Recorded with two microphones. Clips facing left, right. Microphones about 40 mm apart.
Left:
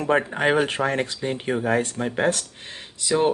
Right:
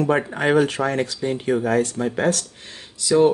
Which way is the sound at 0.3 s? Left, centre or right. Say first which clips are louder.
Right 2 dB; centre.